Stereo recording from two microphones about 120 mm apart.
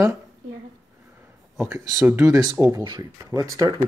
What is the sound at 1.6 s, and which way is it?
Speech, 20° right (ahead or behind).